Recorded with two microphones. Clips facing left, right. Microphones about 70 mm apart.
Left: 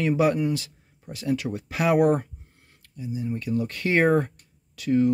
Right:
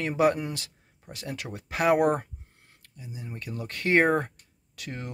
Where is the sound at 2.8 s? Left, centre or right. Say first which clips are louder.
Left 5 dB; right.